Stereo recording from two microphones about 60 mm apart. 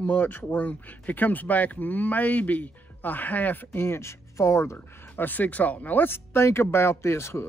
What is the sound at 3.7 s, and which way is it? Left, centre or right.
Speech, left.